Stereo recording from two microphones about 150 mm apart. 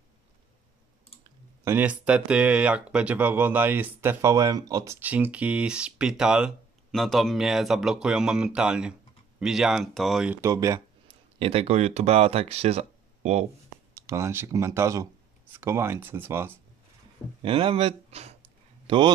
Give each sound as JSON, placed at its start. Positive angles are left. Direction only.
{"t": 1.6, "sound": "speech", "side_deg": -15}
{"t": 10.4, "sound": "speech", "side_deg": -20}
{"t": 11.3, "sound": "speech", "side_deg": -40}
{"t": 13.9, "sound": "speech", "side_deg": -20}
{"t": 17.4, "sound": "a man's voice", "side_deg": -35}